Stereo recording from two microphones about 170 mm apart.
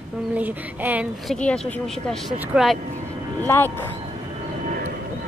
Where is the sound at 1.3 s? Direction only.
5° left (ahead or behind).